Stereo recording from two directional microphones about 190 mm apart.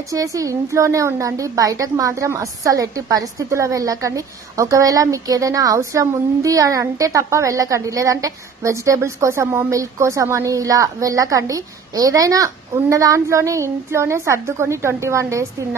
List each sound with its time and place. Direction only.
0.1 s a woman's voice: 15° right (ahead or behind)